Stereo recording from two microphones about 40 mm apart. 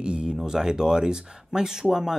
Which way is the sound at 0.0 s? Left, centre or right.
Right.